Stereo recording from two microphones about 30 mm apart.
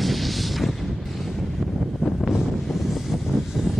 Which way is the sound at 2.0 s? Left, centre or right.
Right.